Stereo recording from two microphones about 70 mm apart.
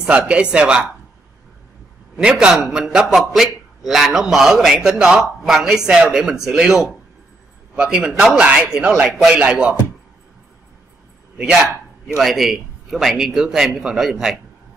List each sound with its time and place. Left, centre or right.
0.3 s a man's voice: centre
2.1 s a man's voice: centre
12.2 s a man's voice: centre